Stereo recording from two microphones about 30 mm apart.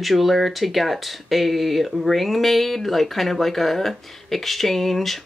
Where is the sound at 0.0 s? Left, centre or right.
Centre.